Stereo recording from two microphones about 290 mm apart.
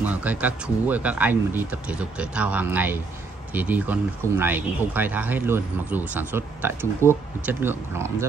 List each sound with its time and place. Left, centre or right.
0.0 s speech: centre